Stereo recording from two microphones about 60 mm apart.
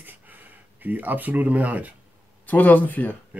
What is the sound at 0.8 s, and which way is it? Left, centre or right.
Speech, right.